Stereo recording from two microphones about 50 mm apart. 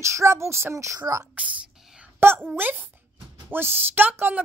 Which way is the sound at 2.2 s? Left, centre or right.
Right.